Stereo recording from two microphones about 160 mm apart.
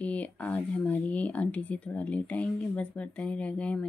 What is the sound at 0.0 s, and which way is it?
Speech, 10° left (ahead or behind).